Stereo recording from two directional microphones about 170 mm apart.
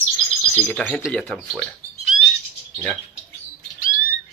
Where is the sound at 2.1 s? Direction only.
5° right (ahead or behind).